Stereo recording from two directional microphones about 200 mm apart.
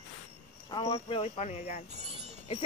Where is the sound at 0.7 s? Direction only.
30° left (ahead or behind).